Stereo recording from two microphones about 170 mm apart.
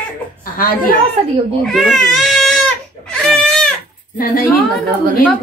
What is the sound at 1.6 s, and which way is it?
Baby cry, centre (ahead or behind).